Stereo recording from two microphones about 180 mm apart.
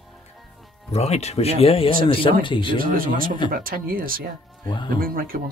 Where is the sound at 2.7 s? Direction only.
50° right (ahead or behind).